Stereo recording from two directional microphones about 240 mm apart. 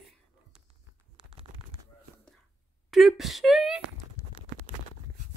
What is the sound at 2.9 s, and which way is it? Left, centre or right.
Wail, centre.